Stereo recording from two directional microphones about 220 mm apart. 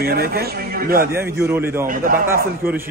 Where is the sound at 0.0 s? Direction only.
45° right (ahead or behind).